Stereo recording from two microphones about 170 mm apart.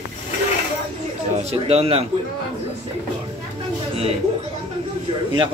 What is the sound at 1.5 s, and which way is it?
Speech, 35° right (ahead or behind).